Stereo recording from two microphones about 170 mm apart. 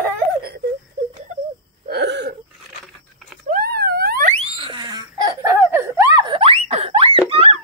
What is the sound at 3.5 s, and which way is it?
Wail, 60° right (ahead or behind).